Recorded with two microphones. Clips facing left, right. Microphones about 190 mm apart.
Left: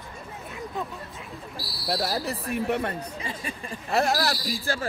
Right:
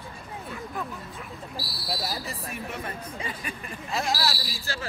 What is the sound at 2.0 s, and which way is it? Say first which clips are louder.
Speech: left 5 dB; 65° left (ahead or behind).